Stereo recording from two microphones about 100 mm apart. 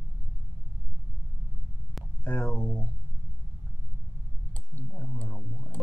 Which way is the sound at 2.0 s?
Centre (ahead or behind).